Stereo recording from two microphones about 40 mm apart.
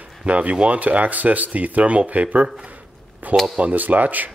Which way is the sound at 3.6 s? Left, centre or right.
Right.